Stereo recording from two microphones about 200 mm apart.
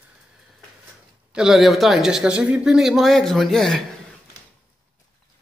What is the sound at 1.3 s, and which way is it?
Speech, 5° right (ahead or behind).